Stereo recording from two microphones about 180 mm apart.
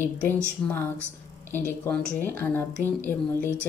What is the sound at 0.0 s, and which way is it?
Speech, 10° left (ahead or behind).